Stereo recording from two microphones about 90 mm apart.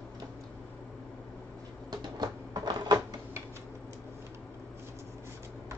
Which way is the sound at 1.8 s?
50° right (ahead or behind).